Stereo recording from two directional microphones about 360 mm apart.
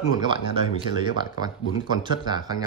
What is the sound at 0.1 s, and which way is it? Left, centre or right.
Speech, centre.